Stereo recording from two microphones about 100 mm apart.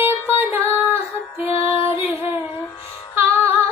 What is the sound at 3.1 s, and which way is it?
Music, 20° right (ahead or behind).